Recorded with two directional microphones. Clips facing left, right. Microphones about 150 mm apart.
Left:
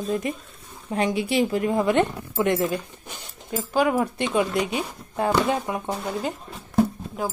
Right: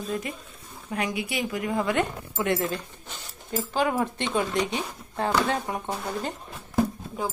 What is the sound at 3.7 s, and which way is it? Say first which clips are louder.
Speech: left 4 dB; 10° left (ahead or behind).